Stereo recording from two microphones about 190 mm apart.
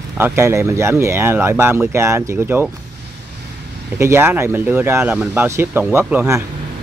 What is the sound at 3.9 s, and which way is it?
Speech, 15° right (ahead or behind).